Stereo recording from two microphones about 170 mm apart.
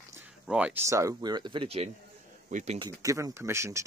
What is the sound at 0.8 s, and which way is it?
Speech, 15° right (ahead or behind).